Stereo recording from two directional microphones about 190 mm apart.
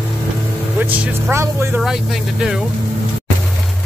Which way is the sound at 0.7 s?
10° right (ahead or behind).